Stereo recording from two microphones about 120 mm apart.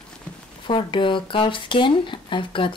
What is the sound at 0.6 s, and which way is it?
Speech, 45° left (ahead or behind).